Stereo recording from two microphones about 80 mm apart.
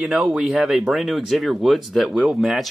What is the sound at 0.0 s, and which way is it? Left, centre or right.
Speech, centre.